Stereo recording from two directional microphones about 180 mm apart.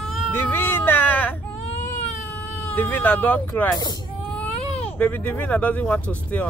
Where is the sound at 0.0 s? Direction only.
10° left (ahead or behind).